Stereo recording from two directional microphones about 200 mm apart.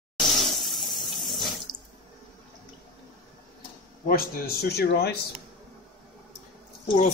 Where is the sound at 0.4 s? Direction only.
Centre (ahead or behind).